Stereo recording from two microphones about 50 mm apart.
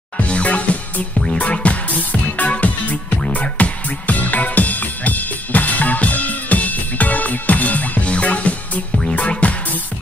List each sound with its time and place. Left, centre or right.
0.2 s music: left